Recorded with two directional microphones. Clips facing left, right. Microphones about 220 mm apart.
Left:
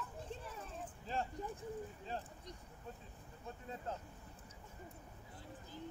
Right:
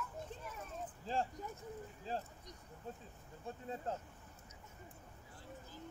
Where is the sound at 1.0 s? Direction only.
30° right (ahead or behind).